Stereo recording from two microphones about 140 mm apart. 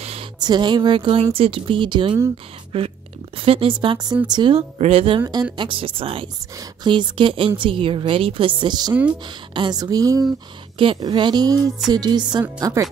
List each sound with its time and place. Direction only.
0.0 s a sound: 45° right (ahead or behind)
0.4 s a woman's voice: 30° right (ahead or behind)
6.5 s a woman's voice: 30° right (ahead or behind)